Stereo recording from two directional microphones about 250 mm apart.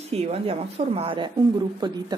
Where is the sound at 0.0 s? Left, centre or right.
Right.